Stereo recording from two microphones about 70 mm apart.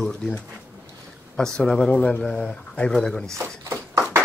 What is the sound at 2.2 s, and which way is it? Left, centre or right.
Speech, centre.